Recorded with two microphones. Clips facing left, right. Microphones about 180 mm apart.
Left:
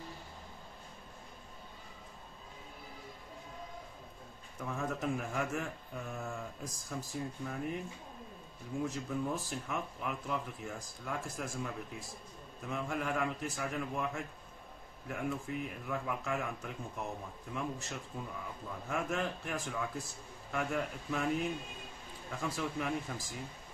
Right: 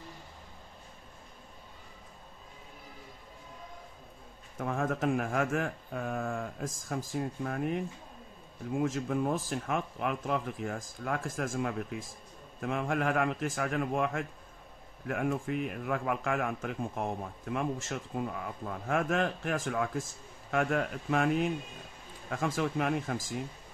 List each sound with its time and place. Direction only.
4.6 s speech: 55° right (ahead or behind)
4.8 s speech: 85° right
7.0 s speech: 80° right
8.7 s speech: 90° right
12.6 s speech: 80° right
22.5 s speech: 70° right (ahead or behind)